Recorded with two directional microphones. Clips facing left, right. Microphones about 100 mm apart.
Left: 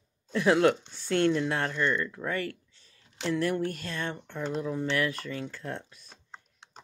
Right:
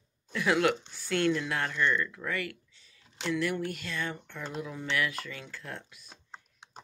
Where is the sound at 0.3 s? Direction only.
30° left (ahead or behind).